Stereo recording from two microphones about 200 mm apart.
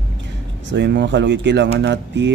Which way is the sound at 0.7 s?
60° right (ahead or behind).